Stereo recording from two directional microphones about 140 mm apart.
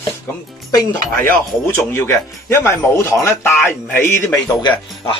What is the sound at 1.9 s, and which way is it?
Speech, 15° left (ahead or behind).